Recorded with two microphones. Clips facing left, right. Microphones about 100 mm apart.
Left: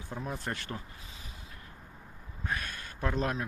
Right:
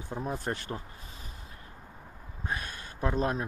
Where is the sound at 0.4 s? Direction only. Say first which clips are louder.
Right 3 dB; 25° right (ahead or behind).